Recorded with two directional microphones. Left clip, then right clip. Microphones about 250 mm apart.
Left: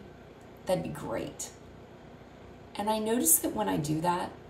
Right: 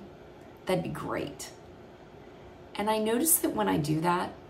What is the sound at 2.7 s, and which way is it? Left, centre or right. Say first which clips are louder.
A woman's voice: right 2 dB; centre.